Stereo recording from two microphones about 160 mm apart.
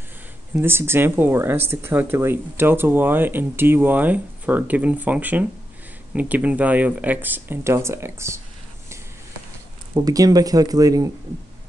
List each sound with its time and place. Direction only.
0.6 s speech: 15° right (ahead or behind)
9.9 s speech: 20° right (ahead or behind)